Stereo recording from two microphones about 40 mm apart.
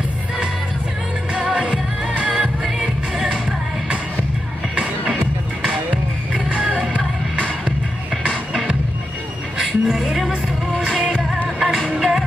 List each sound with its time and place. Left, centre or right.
1.3 s music: right
6.9 s music: left
9.6 s music: centre
11.4 s music: centre